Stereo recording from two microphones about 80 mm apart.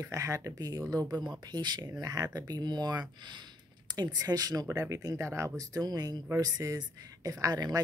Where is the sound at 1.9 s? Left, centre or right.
Right.